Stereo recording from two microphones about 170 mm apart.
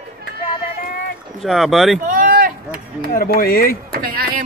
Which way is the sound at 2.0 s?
50° right (ahead or behind).